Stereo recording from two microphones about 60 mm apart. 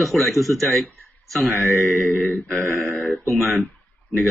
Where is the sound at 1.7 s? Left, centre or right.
Left.